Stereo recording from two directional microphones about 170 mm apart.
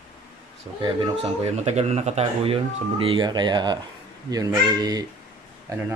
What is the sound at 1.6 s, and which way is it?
Speech, 40° right (ahead or behind).